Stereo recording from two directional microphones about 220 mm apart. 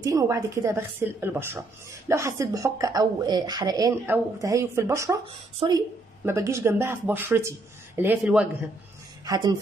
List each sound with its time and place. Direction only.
0.0 s speech: 15° right (ahead or behind)
9.2 s speech: 15° right (ahead or behind)